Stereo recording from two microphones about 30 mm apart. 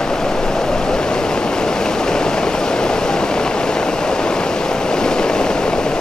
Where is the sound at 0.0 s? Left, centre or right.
Centre.